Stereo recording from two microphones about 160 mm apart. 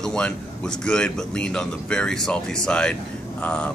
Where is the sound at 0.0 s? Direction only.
5° left (ahead or behind).